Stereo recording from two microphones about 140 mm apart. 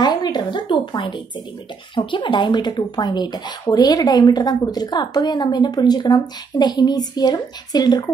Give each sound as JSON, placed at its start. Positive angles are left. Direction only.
{"t": 0.0, "sound": "speech", "side_deg": 30}